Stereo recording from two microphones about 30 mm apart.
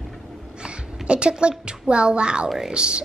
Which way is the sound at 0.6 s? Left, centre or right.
Right.